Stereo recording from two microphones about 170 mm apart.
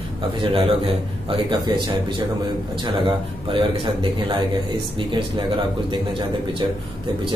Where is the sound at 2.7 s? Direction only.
30° right (ahead or behind).